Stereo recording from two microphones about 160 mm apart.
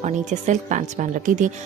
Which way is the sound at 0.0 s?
50° right (ahead or behind).